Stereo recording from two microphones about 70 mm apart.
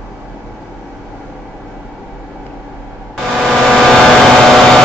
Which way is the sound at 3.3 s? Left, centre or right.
Centre.